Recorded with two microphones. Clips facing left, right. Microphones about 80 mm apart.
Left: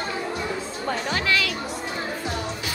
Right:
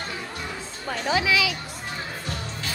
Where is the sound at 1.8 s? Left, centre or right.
Centre.